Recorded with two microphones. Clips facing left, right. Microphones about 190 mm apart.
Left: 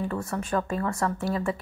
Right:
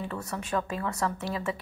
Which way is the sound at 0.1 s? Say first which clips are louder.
Left 3 dB; centre (ahead or behind).